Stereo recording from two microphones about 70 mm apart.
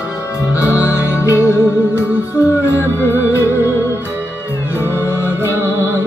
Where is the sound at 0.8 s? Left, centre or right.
Left.